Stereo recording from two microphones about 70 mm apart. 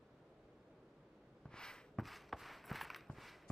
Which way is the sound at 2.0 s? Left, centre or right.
Centre.